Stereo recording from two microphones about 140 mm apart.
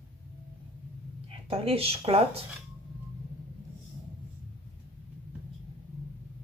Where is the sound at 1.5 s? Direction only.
45° right (ahead or behind).